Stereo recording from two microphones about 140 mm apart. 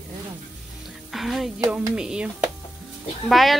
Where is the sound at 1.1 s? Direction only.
Centre (ahead or behind).